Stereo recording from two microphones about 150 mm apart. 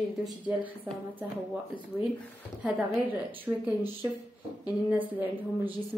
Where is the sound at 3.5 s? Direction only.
20° right (ahead or behind).